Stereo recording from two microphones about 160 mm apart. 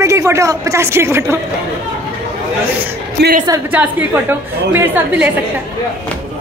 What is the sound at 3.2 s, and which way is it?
Speech, 90° right.